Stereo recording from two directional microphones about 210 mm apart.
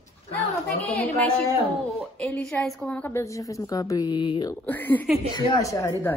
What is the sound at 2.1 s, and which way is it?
A woman's voice, 5° left (ahead or behind).